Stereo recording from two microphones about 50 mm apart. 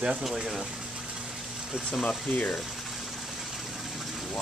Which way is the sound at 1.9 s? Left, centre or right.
Centre.